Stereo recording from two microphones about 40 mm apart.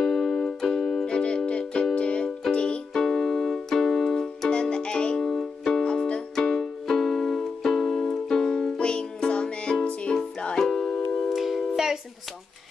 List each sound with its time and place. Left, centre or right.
0.0 s music: centre
1.0 s music: left
2.9 s keyboard: centre
5.2 s music: centre
5.9 s music: left
6.4 s music: centre
10.6 s music: centre
11.3 s music: centre